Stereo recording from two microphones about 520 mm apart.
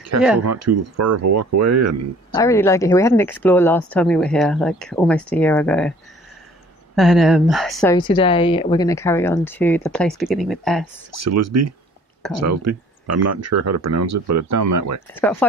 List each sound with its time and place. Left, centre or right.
0.4 s speech: right
2.3 s a woman's voice: centre
7.0 s a woman's voice: centre
11.1 s speech: right
15.1 s a woman's voice: centre